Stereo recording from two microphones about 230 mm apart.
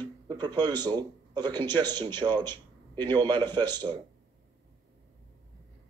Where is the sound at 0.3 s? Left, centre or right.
Centre.